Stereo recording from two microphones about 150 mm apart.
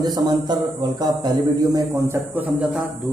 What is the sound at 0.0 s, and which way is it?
A man's voice, 25° right (ahead or behind).